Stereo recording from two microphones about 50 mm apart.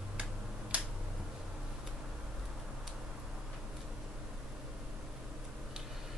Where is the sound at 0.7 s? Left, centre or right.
Right.